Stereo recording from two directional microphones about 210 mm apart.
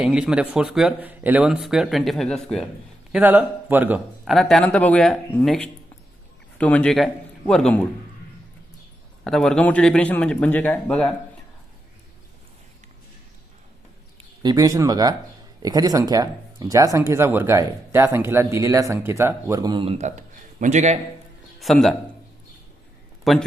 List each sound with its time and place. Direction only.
0.0 s speech: 5° right (ahead or behind)
9.2 s speech: centre (ahead or behind)
14.4 s speech: 20° right (ahead or behind); by 21.0 s 35° right (ahead or behind)
21.5 s a man's voice: centre (ahead or behind)
23.3 s speech: centre (ahead or behind)